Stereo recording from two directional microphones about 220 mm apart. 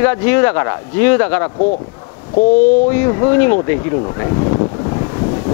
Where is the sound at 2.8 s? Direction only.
15° left (ahead or behind).